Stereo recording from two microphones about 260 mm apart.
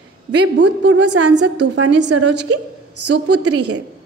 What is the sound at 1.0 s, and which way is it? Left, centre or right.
Speech, right.